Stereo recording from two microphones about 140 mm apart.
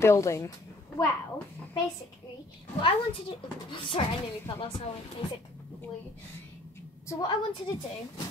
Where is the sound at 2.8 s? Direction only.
40° left (ahead or behind).